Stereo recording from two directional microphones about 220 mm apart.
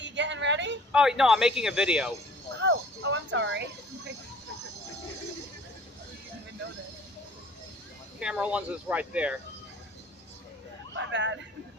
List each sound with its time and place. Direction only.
0.0 s a sound: 55° right (ahead or behind)
0.9 s a man's voice: 5° right (ahead or behind)
2.6 s speech: 55° right (ahead or behind)
8.2 s a man's voice: 5° right (ahead or behind)
11.0 s speech: 55° right (ahead or behind)